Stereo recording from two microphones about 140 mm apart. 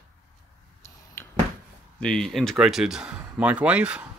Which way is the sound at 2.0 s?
5° left (ahead or behind).